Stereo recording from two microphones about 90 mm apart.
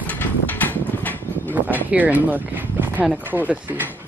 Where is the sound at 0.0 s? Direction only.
20° left (ahead or behind).